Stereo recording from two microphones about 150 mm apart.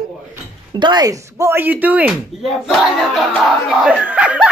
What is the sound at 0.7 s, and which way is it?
Speech, 30° right (ahead or behind).